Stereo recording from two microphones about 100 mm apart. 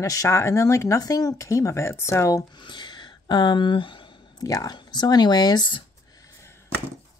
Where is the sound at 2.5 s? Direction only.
50° left (ahead or behind).